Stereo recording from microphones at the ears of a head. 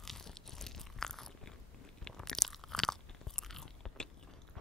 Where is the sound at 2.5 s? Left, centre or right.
Centre.